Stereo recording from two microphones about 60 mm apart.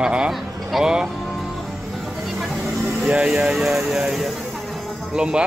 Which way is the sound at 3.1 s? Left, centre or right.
Centre.